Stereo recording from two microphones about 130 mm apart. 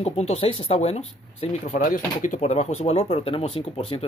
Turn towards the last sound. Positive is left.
turn(degrees=50)  # may be behind; listen again after turning